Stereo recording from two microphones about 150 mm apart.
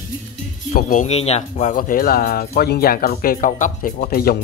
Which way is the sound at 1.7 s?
70° left (ahead or behind).